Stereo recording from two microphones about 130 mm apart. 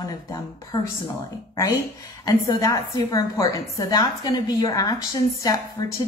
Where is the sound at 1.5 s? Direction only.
25° left (ahead or behind).